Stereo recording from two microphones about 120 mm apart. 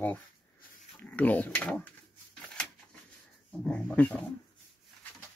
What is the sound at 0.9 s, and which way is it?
Speech, 15° left (ahead or behind).